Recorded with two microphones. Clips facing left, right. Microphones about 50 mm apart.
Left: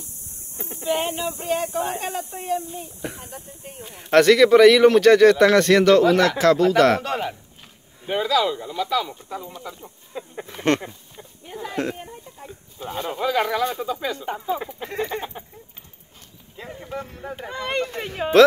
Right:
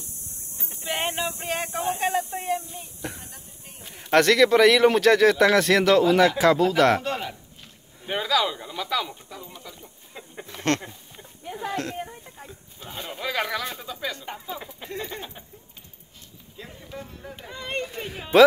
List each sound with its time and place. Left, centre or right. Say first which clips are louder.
0.8 s speech: left 4 dB; centre
2.7 s speech: left 4 dB; centre
7.0 s speech: left 3 dB; left
8.0 s speech: left 3 dB; centre
10.5 s speech: left 4 dB; centre
12.4 s a sound: left 7 dB; centre
13.2 s speech: left 6 dB; centre; by 14.9 s left
14.9 s a sound: left 6 dB; left
16.8 s speech: left 7 dB; left
18.3 s speech: left 1 dB; centre